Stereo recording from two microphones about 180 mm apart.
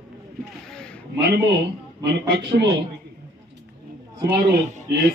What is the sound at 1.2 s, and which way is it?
A man's voice, 75° right (ahead or behind).